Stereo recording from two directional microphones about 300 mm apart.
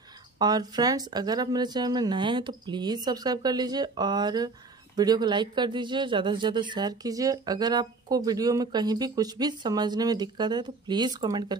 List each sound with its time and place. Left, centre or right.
0.4 s speech: centre